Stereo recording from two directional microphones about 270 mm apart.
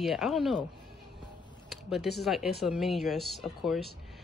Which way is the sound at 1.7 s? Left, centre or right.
Centre.